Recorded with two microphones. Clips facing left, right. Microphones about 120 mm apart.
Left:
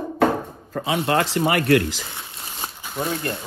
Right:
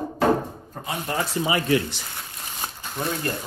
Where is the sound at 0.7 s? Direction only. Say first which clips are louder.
Left 10 dB; 90° left; by 2.0 s 65° left (ahead or behind).